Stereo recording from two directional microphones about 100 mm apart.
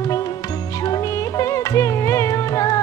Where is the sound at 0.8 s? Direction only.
35° left (ahead or behind).